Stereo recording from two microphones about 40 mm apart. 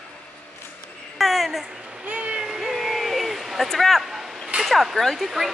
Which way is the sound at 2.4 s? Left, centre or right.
Centre.